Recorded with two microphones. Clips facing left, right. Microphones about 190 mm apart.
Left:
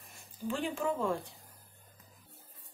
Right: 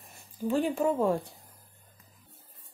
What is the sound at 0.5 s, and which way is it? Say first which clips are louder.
Speech: right 7 dB; 40° right (ahead or behind).